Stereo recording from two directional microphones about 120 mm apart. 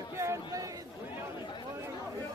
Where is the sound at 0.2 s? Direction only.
25° right (ahead or behind).